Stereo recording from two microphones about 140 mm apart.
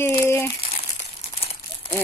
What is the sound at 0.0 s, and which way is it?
Crumpling, 15° left (ahead or behind).